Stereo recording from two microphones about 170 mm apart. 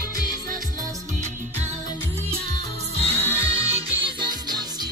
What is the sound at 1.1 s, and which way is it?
Music, 45° right (ahead or behind).